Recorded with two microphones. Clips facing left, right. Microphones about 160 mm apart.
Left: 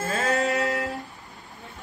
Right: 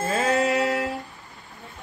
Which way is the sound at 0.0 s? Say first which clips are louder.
Right 3 dB; centre (ahead or behind).